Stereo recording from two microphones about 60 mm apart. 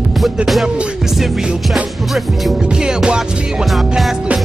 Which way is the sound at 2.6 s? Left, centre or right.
Centre.